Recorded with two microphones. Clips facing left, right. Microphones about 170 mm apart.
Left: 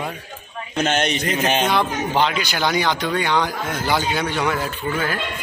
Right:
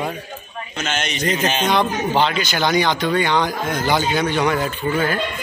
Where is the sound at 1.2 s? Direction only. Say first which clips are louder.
Even; 5° left (ahead or behind).